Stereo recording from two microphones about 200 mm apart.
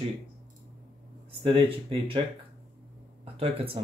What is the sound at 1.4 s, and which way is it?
Speech, 30° right (ahead or behind).